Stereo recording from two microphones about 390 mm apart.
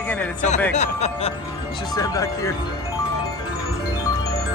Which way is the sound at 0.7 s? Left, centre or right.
Centre.